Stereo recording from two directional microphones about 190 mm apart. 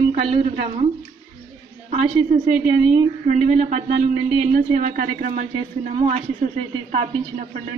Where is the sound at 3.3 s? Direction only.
35° right (ahead or behind).